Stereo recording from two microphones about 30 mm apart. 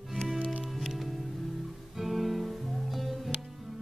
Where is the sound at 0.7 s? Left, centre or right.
Centre.